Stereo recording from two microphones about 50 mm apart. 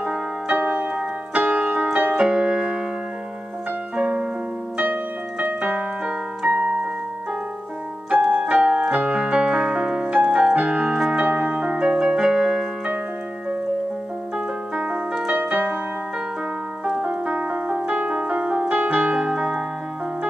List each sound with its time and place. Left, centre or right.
0.0 s piano: right
3.9 s music: right
5.4 s keyboard: right
8.3 s keyboard: right
11.2 s music: right
11.8 s keyboard: centre
15.3 s keyboard: right
16.8 s music: right
19.1 s piano: centre